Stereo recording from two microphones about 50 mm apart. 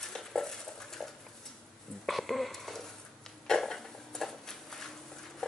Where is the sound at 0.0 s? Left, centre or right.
Centre.